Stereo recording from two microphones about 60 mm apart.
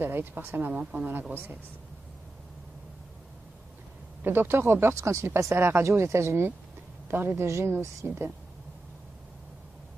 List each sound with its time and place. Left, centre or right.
0.0 s speech: right
4.2 s speech: right